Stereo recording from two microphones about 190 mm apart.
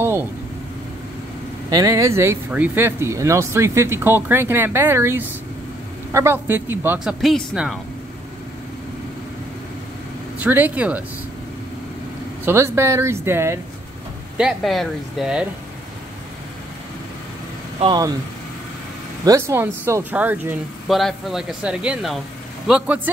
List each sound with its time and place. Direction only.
1.7 s speech: 20° right (ahead or behind); by 7.8 s centre (ahead or behind)
10.4 s speech: 10° right (ahead or behind)
12.4 s speech: 10° right (ahead or behind)
14.3 s speech: centre (ahead or behind)
17.7 s speech: 25° right (ahead or behind)
19.2 s speech: 15° right (ahead or behind)